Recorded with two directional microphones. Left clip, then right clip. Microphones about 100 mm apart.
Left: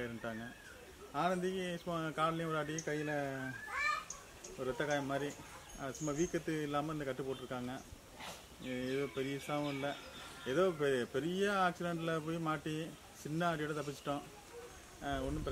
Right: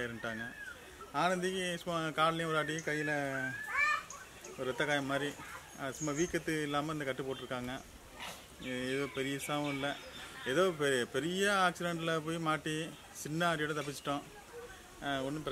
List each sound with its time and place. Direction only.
0.0 s speech: 20° right (ahead or behind)
4.6 s speech: 25° right (ahead or behind)